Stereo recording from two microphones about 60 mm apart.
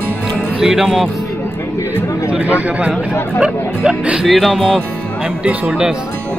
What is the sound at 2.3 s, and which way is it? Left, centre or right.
Speech, right.